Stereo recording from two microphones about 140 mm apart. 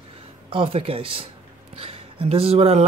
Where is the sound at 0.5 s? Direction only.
40° right (ahead or behind).